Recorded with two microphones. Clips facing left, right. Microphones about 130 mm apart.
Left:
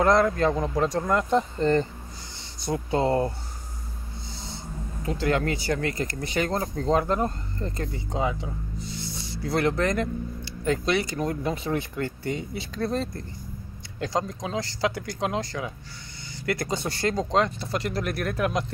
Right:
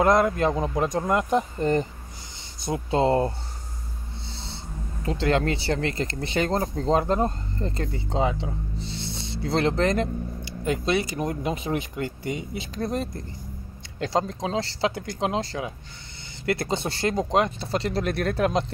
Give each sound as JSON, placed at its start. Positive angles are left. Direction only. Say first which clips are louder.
{"t": 0.0, "sound": "speech", "louder": "even", "side_deg": -20}
{"t": 4.3, "sound": "owl", "louder": "left 1 dB", "side_deg": -25}
{"t": 5.0, "sound": "speech", "louder": "right 2 dB", "side_deg": -25}